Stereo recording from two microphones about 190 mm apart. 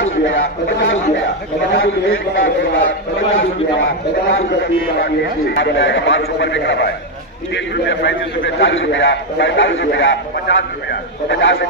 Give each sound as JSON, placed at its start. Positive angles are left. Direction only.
{"t": 0.0, "sound": "a man's voice", "side_deg": 90}
{"t": 8.5, "sound": "a man's voice", "side_deg": 75}